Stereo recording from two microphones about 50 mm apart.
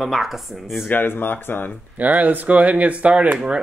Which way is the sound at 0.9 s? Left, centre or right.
Left.